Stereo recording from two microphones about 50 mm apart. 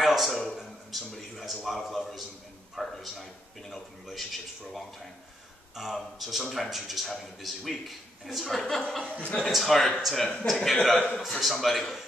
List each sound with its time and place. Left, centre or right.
0.0 s a sound: centre
2.7 s speech: centre
5.8 s speech: centre
9.0 s a man's voice: right
9.4 s speech: centre